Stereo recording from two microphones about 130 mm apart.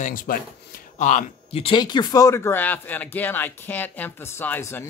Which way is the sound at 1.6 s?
40° left (ahead or behind).